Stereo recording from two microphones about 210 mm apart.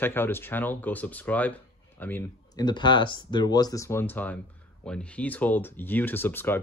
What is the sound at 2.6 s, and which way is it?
Speech, 20° left (ahead or behind).